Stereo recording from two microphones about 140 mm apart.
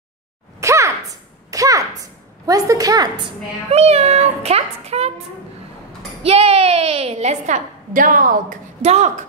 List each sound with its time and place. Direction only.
0.6 s a sound: 20° right (ahead or behind)
3.7 s a woman's voice: 45° right (ahead or behind)
6.2 s a woman's voice: 45° right (ahead or behind); by 8.5 s 80° right
8.8 s speech: 55° right (ahead or behind)